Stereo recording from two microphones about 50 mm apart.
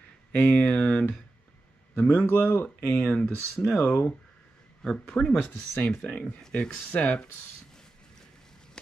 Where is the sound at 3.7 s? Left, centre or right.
Left.